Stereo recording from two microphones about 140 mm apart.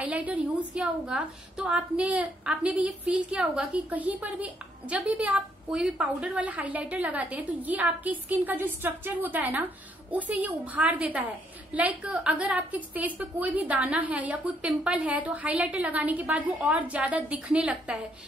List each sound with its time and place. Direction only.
0.0 s a woman's voice: 10° right (ahead or behind)